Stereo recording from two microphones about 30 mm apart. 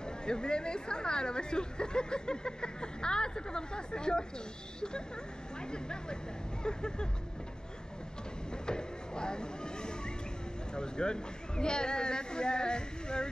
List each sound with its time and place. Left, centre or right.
0.0 s speech: left
8.6 s chop: left
10.7 s speech: left